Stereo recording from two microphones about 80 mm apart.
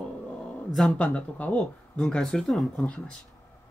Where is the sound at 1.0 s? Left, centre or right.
Centre.